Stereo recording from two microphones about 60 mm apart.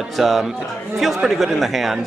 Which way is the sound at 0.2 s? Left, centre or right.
Centre.